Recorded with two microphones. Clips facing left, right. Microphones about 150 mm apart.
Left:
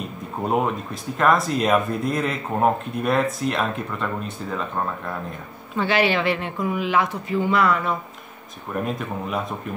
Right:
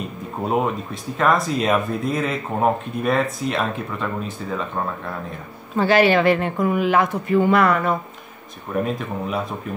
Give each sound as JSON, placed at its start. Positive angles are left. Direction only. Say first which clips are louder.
{"t": 0.5, "sound": "speech", "louder": "right 1 dB", "side_deg": 0}
{"t": 5.8, "sound": "speech", "louder": "right 5 dB", "side_deg": -45}
{"t": 8.7, "sound": "speech", "louder": "right 3 dB", "side_deg": 0}